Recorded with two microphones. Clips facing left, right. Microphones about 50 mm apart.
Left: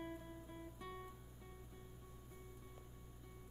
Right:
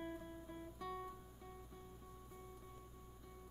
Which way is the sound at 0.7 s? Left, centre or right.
Left.